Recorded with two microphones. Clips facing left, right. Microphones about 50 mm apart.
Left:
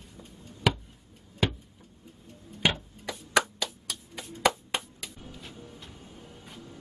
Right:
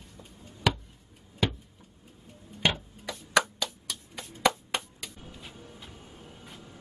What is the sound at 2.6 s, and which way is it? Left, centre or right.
Tick-tock, centre.